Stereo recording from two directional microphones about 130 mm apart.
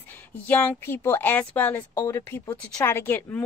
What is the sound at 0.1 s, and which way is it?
Speech, 10° left (ahead or behind).